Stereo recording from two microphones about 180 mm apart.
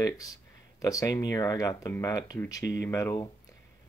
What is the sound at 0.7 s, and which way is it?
Speech, 20° left (ahead or behind).